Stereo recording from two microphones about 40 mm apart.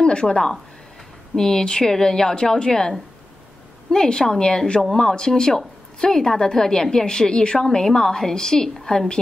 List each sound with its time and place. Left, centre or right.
0.0 s speech: left
1.3 s a woman's voice: centre
3.9 s a woman's voice: centre